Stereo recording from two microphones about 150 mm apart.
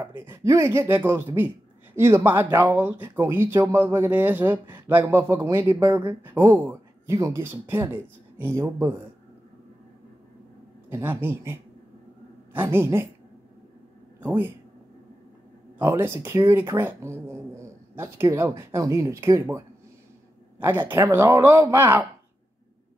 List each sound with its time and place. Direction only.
0.2 s speech: 15° right (ahead or behind)
10.9 s speech: 15° right (ahead or behind)
14.2 s speech: 15° right (ahead or behind)
15.8 s speech: 15° right (ahead or behind)